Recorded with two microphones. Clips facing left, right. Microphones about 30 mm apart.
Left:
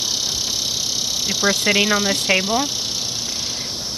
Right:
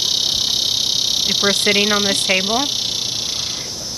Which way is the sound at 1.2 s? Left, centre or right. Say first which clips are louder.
Right 1 dB; right.